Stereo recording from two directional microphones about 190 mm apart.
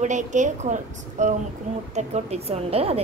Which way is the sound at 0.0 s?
40° right (ahead or behind).